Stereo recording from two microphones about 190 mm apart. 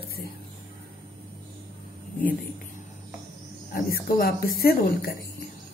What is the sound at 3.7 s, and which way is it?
A woman's voice, 55° left (ahead or behind).